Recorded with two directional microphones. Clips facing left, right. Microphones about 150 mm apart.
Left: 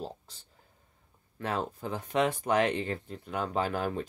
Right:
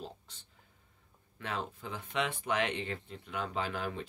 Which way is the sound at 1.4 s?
40° left (ahead or behind).